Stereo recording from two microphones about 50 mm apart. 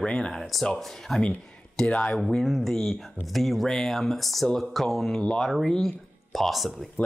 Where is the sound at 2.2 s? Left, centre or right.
Centre.